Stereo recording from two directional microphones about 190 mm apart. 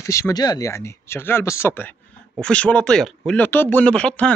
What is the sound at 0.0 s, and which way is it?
Speech, 15° left (ahead or behind).